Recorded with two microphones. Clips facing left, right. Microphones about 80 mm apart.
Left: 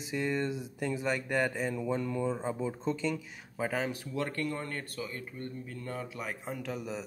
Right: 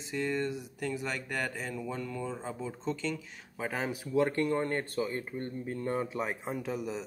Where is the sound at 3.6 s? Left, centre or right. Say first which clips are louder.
Left 1 dB; centre.